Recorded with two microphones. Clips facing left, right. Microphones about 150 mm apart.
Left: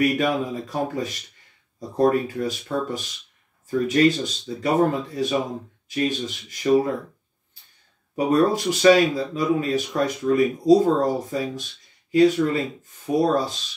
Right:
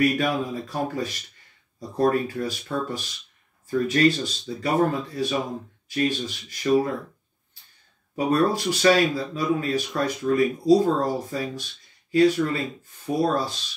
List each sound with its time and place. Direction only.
0.0 s speech: 20° left (ahead or behind)
8.3 s speech: 20° left (ahead or behind)